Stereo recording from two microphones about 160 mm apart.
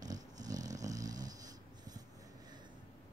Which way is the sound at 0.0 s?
25° right (ahead or behind).